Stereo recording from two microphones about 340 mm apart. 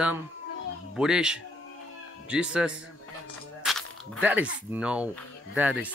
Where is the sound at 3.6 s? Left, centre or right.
Centre.